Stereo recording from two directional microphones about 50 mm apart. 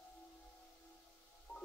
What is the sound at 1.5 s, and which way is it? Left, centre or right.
Music, left.